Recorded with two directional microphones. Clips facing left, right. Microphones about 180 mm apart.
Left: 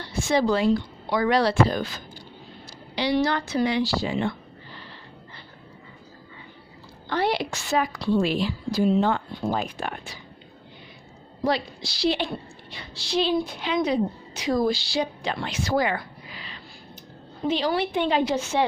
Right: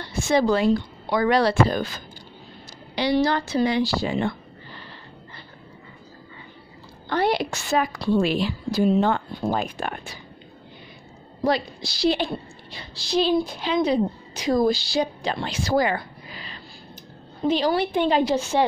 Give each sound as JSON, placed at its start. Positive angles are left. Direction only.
{"t": 0.0, "sound": "a woman's voice", "side_deg": -50}
{"t": 3.2, "sound": "a woman's voice", "side_deg": -35}
{"t": 7.1, "sound": "a woman's voice", "side_deg": -50}
{"t": 11.4, "sound": "a woman's voice", "side_deg": -45}